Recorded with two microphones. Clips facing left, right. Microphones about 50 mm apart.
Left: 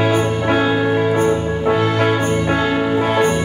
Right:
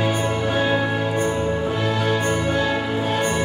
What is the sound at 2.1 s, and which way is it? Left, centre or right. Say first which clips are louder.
Music: left 3 dB; centre.